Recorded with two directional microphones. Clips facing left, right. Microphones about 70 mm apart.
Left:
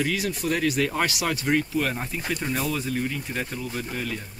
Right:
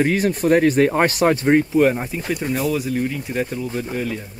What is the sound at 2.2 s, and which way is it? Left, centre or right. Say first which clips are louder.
Speech: right 5 dB; centre.